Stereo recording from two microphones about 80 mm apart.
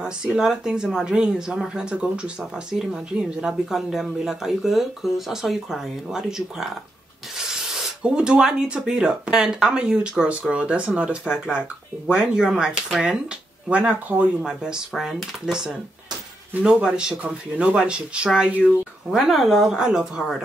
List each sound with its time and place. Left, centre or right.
0.0 s speech: centre
14.4 s speech: centre